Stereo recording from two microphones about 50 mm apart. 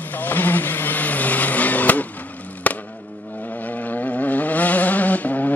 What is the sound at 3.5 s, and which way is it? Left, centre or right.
Vehicle, left.